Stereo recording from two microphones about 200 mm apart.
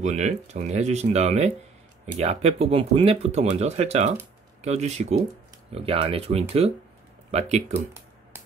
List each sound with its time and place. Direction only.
0.0 s speech: 35° right (ahead or behind)